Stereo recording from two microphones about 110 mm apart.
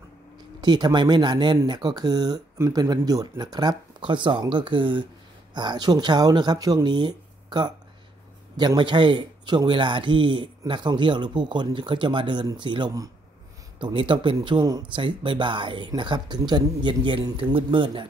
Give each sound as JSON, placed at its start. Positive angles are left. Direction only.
{"t": 0.6, "sound": "speech", "side_deg": -40}